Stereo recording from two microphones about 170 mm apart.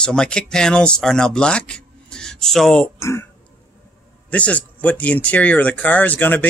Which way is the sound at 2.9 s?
15° left (ahead or behind).